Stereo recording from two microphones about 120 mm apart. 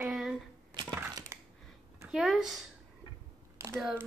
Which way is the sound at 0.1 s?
5° right (ahead or behind).